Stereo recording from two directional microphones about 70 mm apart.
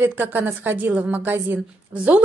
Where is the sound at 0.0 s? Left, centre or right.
Right.